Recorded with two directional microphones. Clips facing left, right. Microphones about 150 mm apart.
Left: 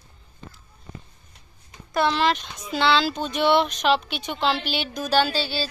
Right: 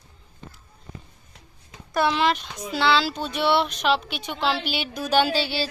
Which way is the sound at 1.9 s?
10° right (ahead or behind).